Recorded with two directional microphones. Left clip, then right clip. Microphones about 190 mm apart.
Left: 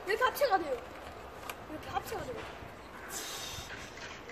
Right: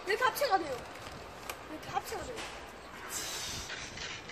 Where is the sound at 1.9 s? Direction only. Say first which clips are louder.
Right 1 dB; 20° left (ahead or behind).